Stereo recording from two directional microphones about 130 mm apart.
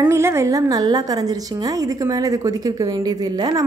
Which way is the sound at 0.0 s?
20° right (ahead or behind).